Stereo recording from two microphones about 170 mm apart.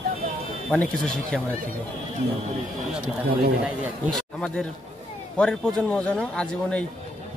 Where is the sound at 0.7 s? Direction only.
5° left (ahead or behind).